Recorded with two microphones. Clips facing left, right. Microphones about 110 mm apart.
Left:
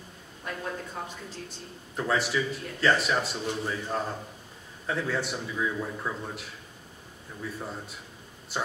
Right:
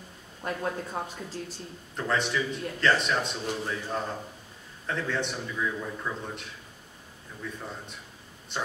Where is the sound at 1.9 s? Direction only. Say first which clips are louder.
Left 1 dB; 5° left (ahead or behind).